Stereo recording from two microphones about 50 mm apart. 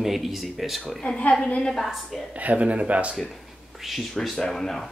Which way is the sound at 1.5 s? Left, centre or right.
Centre.